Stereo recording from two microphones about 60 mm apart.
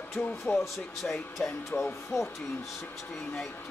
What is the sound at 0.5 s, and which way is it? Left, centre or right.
Speech, centre.